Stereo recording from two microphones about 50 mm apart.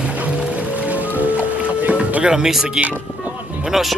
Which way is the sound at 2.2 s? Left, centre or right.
Centre.